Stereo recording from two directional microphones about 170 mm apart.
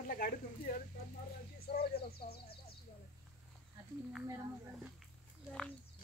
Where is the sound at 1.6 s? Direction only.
65° left (ahead or behind).